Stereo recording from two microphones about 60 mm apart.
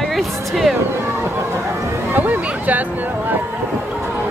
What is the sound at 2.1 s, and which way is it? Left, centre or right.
Speech, right.